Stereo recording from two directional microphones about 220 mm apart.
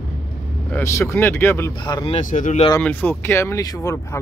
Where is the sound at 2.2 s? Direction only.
35° left (ahead or behind).